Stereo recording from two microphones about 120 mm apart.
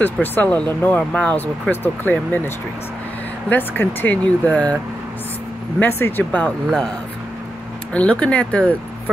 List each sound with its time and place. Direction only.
0.0 s speech: 15° left (ahead or behind)
5.8 s speech: 20° left (ahead or behind)
7.9 s speech: 10° left (ahead or behind)